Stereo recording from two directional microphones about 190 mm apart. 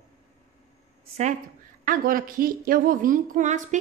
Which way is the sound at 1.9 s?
45° right (ahead or behind).